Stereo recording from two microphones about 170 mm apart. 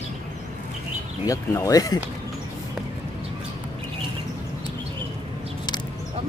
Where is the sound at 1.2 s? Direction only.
20° left (ahead or behind).